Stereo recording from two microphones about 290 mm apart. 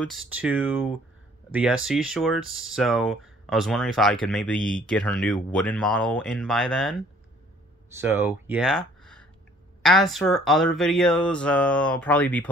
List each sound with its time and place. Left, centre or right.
0.0 s speech: centre
8.0 s speech: centre